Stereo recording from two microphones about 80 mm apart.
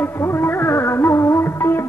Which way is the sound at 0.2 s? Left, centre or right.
Left.